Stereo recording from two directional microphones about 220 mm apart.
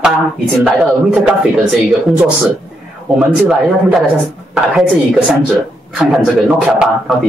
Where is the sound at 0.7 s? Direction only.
5° right (ahead or behind).